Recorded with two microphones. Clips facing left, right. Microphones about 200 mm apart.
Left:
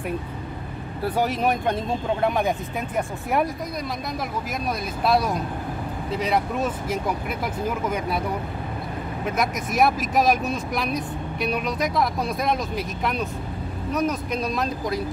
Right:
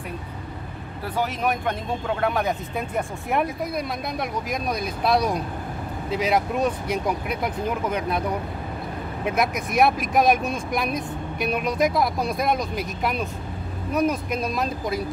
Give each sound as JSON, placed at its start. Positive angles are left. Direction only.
{"t": 2.1, "sound": "speech", "side_deg": 15}
{"t": 3.3, "sound": "speech", "side_deg": 0}
{"t": 9.4, "sound": "speech", "side_deg": 0}